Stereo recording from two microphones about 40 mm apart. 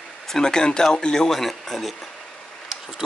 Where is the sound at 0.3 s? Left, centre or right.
Centre.